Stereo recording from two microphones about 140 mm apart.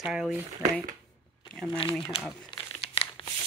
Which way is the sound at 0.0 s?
5° right (ahead or behind).